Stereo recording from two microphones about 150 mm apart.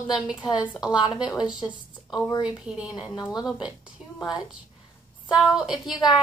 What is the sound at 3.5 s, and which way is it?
Speech, 5° right (ahead or behind).